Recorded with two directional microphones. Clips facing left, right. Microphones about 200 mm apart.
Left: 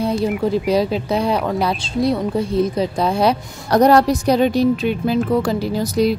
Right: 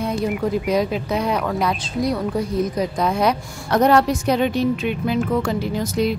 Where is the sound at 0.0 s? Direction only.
30° left (ahead or behind).